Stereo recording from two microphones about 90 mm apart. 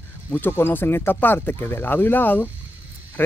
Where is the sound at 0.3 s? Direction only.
25° left (ahead or behind).